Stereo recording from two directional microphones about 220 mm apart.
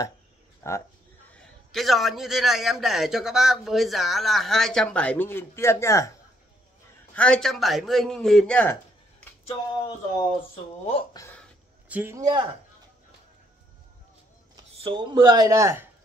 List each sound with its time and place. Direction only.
0.6 s speech: 10° left (ahead or behind)
1.3 s a man's voice: centre (ahead or behind)
7.2 s a man's voice: 5° left (ahead or behind)
10.1 s speech: 25° left (ahead or behind)
11.9 s speech: 10° right (ahead or behind)
14.8 s speech: 20° right (ahead or behind)